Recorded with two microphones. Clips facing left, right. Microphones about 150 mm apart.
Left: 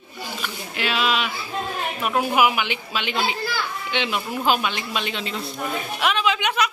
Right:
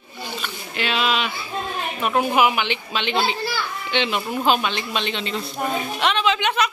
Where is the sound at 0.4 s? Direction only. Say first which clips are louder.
Even; 5° left (ahead or behind).